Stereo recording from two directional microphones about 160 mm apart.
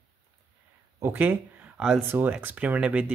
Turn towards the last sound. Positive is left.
turn(degrees=-5)  # may be behind; listen again after turning